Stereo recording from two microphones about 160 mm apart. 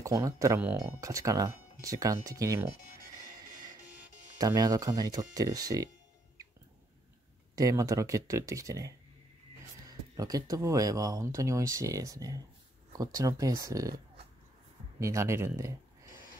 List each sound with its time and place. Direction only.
0.0 s speech: 20° right (ahead or behind)
4.4 s speech: 20° right (ahead or behind)
7.5 s speech: 20° right (ahead or behind)
15.0 s speech: 20° right (ahead or behind)